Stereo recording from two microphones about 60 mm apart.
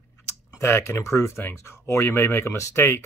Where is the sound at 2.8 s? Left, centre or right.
Left.